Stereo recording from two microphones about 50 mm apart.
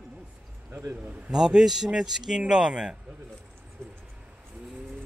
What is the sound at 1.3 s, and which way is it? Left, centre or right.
A man's voice, centre.